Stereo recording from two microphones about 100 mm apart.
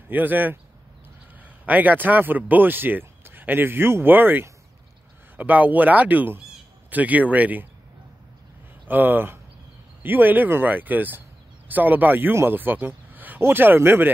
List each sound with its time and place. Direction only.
0.1 s speech: 20° right (ahead or behind)
1.7 s speech: 15° right (ahead or behind)
8.8 s speech: 20° right (ahead or behind)